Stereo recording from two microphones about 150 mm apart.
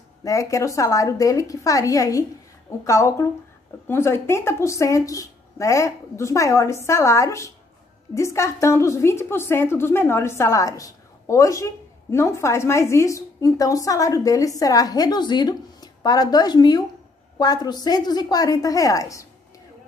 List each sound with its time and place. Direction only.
0.2 s a woman's voice: 20° left (ahead or behind)